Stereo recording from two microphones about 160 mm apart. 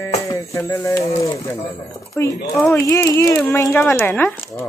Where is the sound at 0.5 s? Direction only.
20° left (ahead or behind).